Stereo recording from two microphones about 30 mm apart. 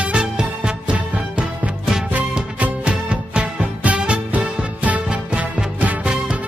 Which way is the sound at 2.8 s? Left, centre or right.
Right.